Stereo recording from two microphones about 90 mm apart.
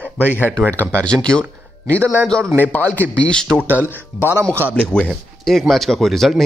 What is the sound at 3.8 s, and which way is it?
Speech, 30° left (ahead or behind).